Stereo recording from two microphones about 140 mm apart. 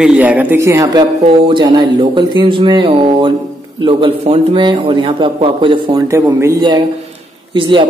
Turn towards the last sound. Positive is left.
turn(degrees=-35)  # may be behind; listen again after turning